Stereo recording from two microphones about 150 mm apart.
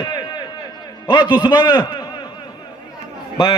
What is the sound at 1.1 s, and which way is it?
Speech, 30° left (ahead or behind).